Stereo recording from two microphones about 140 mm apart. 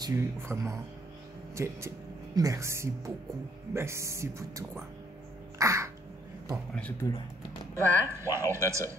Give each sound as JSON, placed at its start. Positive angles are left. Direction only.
{"t": 0.0, "sound": "speech", "side_deg": -20}
{"t": 5.6, "sound": "crow", "side_deg": -20}
{"t": 6.5, "sound": "speech", "side_deg": 10}
{"t": 7.7, "sound": "speech", "side_deg": -20}